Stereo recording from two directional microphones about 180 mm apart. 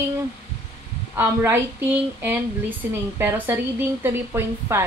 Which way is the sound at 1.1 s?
10° right (ahead or behind).